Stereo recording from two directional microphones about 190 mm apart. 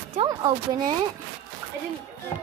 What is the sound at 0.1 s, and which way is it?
Speech, 25° right (ahead or behind).